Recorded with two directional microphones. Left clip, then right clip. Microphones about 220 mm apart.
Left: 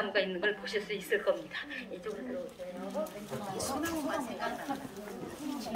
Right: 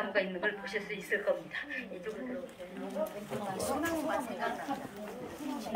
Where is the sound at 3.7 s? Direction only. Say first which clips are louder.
Right 2 dB; 30° right (ahead or behind).